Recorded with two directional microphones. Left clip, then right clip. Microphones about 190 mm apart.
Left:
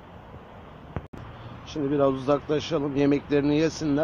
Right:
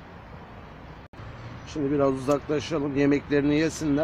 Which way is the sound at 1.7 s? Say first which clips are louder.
Left 1 dB; 5° right (ahead or behind).